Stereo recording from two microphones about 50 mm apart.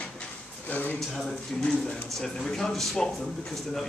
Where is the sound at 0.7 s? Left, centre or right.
Left.